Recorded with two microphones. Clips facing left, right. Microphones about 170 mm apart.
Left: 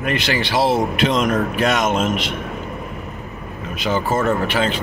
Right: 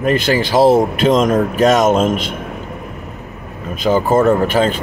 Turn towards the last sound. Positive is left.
turn(degrees=-45)  # may be behind; listen again after turning